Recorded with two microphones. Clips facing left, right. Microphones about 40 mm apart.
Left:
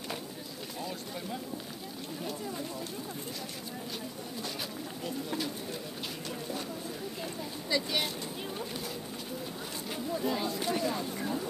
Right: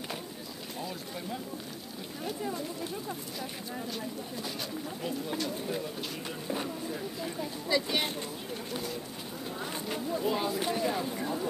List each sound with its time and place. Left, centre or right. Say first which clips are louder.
0.7 s speech: even; centre
6.5 s speech: right 3 dB; right
9.8 s speech: right 1 dB; centre